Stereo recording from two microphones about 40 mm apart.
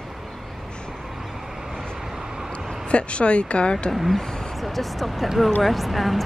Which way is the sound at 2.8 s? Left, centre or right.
Left.